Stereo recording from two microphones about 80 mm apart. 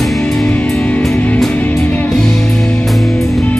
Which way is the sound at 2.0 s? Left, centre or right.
Centre.